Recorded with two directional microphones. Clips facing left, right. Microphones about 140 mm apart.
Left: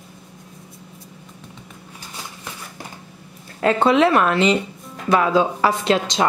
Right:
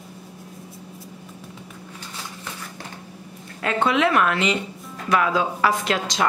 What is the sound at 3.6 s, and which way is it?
A woman's voice, 35° left (ahead or behind).